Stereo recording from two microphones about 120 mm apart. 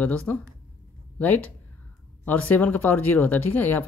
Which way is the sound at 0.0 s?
10° left (ahead or behind).